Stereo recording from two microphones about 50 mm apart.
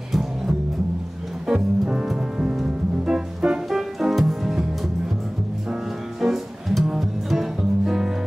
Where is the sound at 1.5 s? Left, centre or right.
Centre.